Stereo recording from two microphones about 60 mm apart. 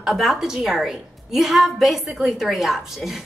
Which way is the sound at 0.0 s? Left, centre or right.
Centre.